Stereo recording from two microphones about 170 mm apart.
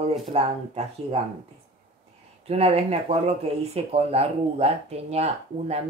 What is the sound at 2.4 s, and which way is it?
Speech, 35° right (ahead or behind).